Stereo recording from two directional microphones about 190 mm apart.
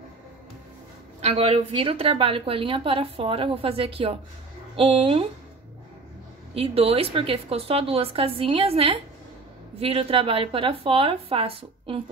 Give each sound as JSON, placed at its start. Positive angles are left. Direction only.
{"t": 1.2, "sound": "a woman's voice", "side_deg": -30}
{"t": 6.5, "sound": "a woman's voice", "side_deg": -30}